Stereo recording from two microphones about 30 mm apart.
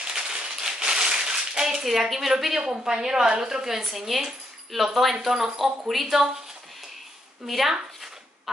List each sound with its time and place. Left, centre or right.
0.0 s a sound: right
3.3 s a woman's voice: centre
7.4 s a woman's voice: centre